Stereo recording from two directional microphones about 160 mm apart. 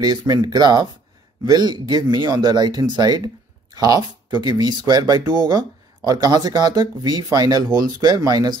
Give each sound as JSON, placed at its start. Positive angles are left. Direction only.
{"t": 0.0, "sound": "speech", "side_deg": -25}